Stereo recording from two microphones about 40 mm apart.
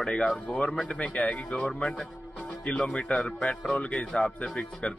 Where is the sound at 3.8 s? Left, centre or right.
Left.